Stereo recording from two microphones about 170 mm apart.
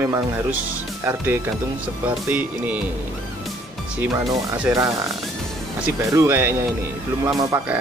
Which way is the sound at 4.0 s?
15° right (ahead or behind).